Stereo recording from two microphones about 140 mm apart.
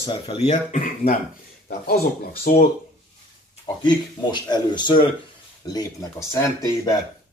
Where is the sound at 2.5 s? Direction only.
75° left (ahead or behind).